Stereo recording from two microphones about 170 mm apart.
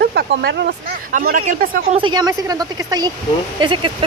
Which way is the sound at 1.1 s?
55° right (ahead or behind).